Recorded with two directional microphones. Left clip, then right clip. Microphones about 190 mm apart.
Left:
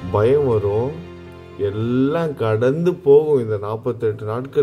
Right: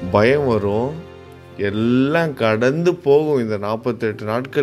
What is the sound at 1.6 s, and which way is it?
Speech, 55° right (ahead or behind).